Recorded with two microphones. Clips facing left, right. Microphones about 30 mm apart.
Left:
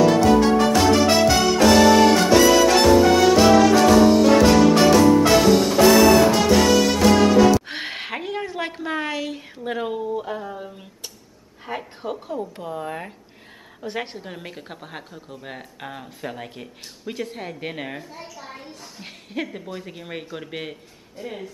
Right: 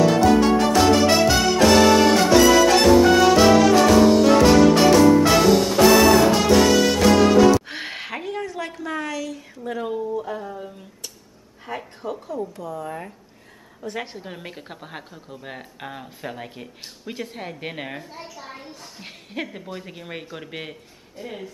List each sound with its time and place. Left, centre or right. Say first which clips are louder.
0.0 s music: left 1 dB; centre
7.6 s a sound: left 2 dB; centre; by 9.4 s left
9.7 s speech: left 1 dB; left
10.2 s a sound: left 1 dB; centre
11.7 s a woman's voice: left 1 dB; centre
14.1 s a woman's voice: even; centre